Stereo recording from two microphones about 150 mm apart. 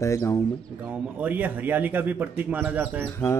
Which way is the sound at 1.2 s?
10° right (ahead or behind).